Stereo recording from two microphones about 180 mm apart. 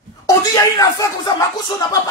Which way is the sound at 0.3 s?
20° left (ahead or behind).